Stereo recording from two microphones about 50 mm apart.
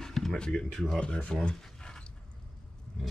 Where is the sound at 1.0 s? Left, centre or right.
Left.